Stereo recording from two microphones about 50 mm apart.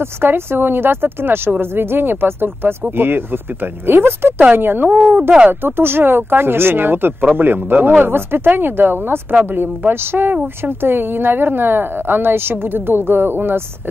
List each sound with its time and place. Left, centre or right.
0.0 s speech: right